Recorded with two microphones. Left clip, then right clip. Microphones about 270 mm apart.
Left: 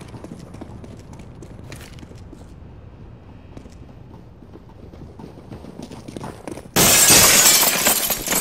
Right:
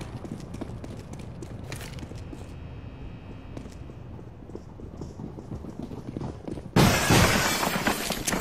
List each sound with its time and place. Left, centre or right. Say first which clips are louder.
0.0 s clip-clop: left 2 dB; centre
1.4 s a sound: even; centre
6.2 s shatter: left 5 dB; left